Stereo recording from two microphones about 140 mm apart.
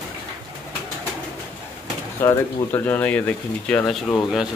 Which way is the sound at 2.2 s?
15° left (ahead or behind).